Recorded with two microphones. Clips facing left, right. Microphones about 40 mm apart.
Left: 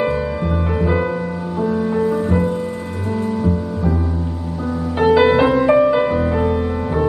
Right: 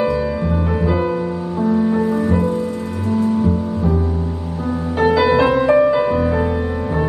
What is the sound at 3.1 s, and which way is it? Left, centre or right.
Music, left.